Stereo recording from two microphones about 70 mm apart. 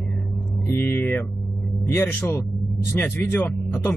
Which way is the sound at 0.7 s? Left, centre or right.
Left.